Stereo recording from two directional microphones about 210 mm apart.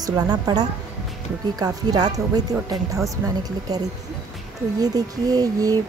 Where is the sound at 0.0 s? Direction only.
20° right (ahead or behind).